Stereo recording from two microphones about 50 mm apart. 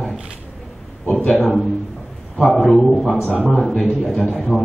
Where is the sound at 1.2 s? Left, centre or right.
Left.